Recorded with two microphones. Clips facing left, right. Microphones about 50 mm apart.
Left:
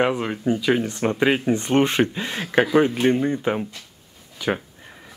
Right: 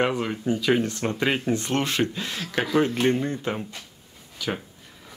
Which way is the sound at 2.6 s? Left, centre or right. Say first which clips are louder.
Left 4 dB; centre.